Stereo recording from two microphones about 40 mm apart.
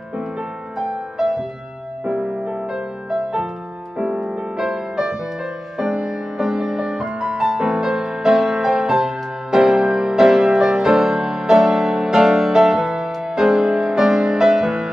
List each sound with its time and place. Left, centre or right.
0.8 s music: centre